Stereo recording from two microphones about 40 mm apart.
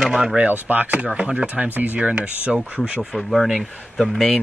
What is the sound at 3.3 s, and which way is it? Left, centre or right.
Speech, centre.